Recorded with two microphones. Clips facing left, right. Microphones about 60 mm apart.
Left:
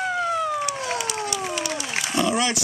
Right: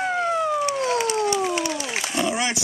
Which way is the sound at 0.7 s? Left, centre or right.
Right.